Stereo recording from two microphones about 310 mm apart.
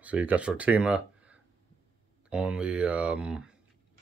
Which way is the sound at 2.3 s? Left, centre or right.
Centre.